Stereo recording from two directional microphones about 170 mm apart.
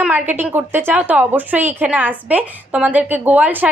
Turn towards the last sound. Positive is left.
turn(degrees=-10)  # may be behind; listen again after turning